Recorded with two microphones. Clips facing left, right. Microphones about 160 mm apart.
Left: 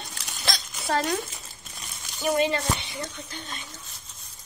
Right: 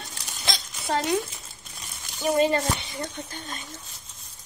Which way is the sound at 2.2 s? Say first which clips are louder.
Right 2 dB; 35° right (ahead or behind).